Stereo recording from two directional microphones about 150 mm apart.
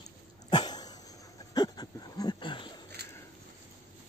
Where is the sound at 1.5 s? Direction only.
25° left (ahead or behind).